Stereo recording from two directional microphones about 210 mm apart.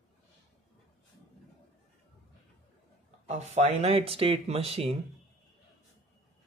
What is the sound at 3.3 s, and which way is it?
Speech, 30° right (ahead or behind).